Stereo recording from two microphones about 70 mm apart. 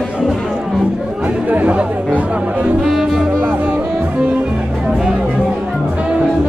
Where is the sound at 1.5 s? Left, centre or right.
Right.